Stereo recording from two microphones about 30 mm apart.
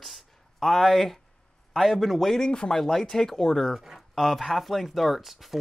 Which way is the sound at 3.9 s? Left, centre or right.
Centre.